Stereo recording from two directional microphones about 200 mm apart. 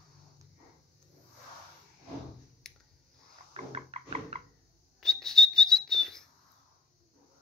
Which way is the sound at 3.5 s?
35° right (ahead or behind).